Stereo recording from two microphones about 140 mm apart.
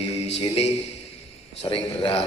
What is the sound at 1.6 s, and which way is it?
Speech, 40° left (ahead or behind).